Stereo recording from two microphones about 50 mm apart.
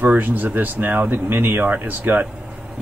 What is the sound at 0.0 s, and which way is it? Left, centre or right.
Speech, right.